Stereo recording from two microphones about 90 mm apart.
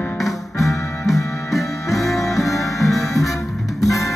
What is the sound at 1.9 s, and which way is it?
Music, centre (ahead or behind).